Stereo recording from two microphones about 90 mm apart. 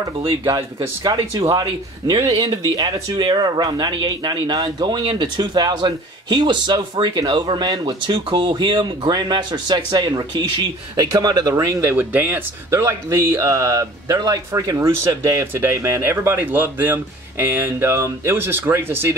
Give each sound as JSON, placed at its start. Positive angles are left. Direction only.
{"t": 0.5, "sound": "speech", "side_deg": -35}
{"t": 1.5, "sound": "speech", "side_deg": -45}
{"t": 11.8, "sound": "speech", "side_deg": -25}
{"t": 12.7, "sound": "speech", "side_deg": -30}